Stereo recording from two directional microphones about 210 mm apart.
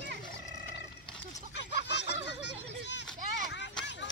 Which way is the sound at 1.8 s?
55° left (ahead or behind).